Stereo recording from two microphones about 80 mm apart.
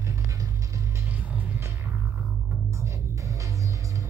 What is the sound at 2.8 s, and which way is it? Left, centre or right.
Music, right.